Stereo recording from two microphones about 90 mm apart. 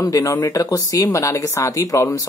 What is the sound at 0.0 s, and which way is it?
Speech, 40° left (ahead or behind).